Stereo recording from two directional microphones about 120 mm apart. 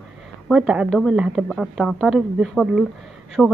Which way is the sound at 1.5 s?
Centre (ahead or behind).